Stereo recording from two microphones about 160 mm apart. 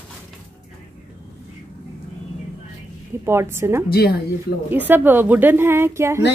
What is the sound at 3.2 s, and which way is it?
Speech, 15° right (ahead or behind).